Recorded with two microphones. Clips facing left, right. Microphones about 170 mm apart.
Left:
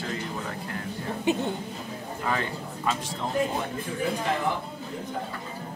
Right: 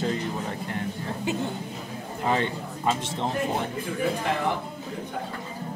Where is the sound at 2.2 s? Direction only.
25° right (ahead or behind).